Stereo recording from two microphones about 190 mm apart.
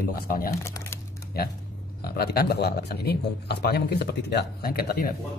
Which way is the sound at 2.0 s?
55° left (ahead or behind).